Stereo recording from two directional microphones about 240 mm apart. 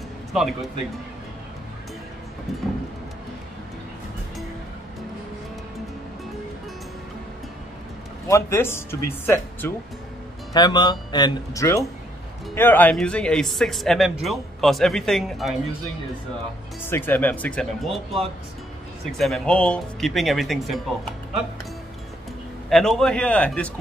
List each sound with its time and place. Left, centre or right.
0.3 s speech: centre
8.3 s speech: centre
16.9 s speech: centre
19.1 s speech: centre
22.7 s speech: centre